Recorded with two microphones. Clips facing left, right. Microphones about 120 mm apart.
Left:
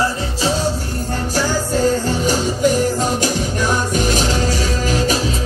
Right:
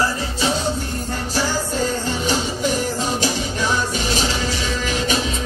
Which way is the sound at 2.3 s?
45° left (ahead or behind).